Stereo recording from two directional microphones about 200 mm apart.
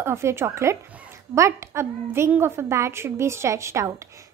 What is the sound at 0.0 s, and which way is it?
A woman's voice, 15° right (ahead or behind).